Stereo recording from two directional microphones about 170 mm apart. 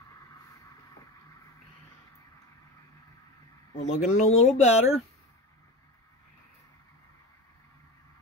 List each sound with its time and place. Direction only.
3.7 s speech: 40° left (ahead or behind)